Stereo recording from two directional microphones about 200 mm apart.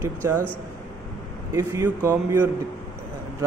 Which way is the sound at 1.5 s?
15° right (ahead or behind).